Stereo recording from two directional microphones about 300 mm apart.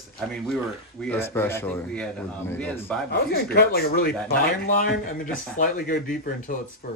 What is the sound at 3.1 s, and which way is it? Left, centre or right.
Speech, left.